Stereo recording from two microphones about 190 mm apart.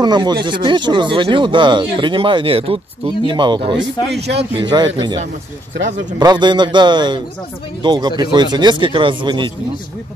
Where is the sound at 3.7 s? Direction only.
60° right (ahead or behind).